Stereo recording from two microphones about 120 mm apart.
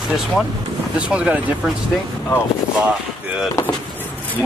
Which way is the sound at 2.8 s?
5° right (ahead or behind).